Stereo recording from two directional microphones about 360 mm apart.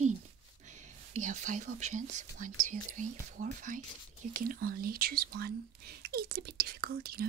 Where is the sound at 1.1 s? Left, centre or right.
Centre.